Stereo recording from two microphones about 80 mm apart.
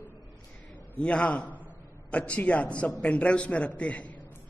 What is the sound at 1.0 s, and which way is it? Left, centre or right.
A man's voice, centre.